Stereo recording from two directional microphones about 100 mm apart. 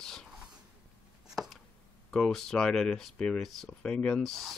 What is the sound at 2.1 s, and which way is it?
Speech, 5° left (ahead or behind).